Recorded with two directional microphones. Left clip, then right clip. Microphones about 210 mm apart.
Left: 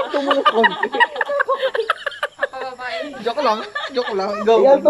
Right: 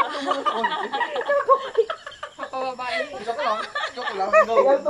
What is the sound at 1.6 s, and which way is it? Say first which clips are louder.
Snicker: left 4 dB; 50° left (ahead or behind).